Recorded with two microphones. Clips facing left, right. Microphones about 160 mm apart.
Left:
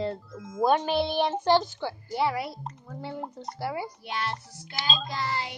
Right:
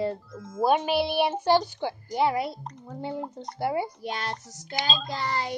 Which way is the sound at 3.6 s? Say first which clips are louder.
Right 5 dB; 25° right (ahead or behind).